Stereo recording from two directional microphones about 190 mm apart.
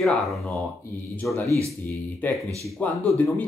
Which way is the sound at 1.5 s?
15° right (ahead or behind).